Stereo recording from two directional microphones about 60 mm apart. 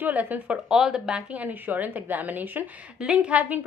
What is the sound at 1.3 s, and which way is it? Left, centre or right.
A woman's voice, right.